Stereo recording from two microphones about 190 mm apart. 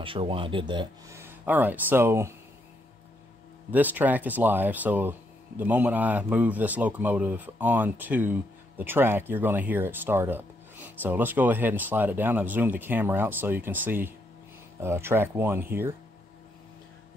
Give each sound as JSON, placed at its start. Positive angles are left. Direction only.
{"t": 0.0, "sound": "speech", "side_deg": -30}
{"t": 1.1, "sound": "speech", "side_deg": -10}
{"t": 3.7, "sound": "speech", "side_deg": -10}